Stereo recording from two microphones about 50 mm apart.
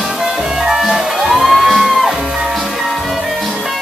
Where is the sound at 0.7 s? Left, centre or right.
Centre.